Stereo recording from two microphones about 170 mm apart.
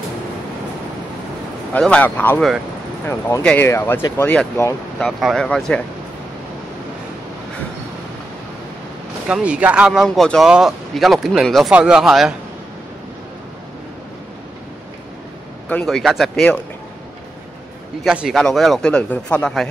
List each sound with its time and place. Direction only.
1.7 s speech: 5° left (ahead or behind)
5.0 s speech: centre (ahead or behind)
9.3 s speech: 5° right (ahead or behind)
15.7 s speech: centre (ahead or behind)
18.0 s speech: 5° right (ahead or behind)